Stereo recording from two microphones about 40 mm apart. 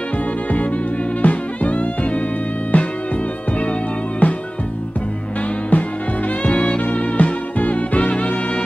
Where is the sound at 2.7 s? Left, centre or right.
Left.